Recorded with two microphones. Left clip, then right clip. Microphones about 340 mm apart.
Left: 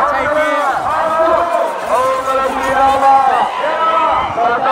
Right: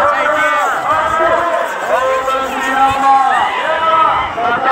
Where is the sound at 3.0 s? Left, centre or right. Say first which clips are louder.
Even; left.